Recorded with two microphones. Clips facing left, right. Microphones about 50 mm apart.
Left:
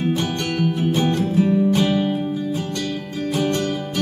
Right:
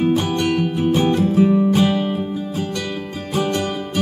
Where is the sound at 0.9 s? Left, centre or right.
Centre.